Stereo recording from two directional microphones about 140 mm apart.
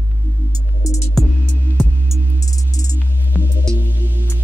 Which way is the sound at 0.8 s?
25° left (ahead or behind).